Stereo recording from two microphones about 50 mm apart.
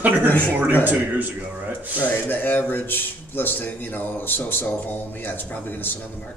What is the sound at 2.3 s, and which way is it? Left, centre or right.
A man's voice, left.